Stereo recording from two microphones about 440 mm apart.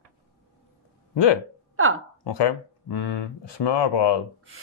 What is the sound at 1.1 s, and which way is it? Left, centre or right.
Speech, left.